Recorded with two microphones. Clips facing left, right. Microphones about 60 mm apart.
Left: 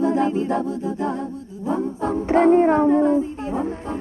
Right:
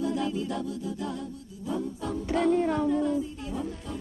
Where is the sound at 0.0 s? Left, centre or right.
Left.